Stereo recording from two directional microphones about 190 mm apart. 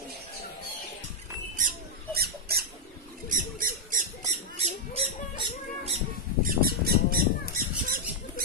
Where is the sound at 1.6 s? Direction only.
50° right (ahead or behind).